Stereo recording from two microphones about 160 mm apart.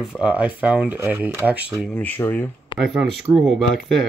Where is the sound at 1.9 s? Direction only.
10° left (ahead or behind).